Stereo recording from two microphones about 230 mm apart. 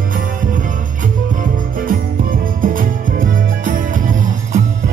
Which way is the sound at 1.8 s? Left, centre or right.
Right.